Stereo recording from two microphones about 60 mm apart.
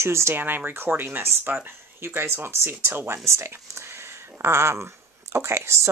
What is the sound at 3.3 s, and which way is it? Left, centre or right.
Speech, right.